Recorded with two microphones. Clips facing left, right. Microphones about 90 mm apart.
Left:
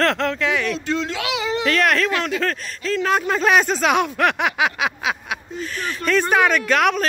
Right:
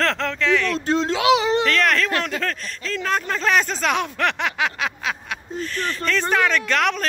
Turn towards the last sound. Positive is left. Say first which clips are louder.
# left 3 dB
turn(degrees=10)  # may be behind; listen again after turning